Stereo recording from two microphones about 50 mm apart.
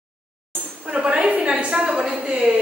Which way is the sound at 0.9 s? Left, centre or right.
Right.